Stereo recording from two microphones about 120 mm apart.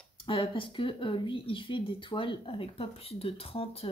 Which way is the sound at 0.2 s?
45° left (ahead or behind).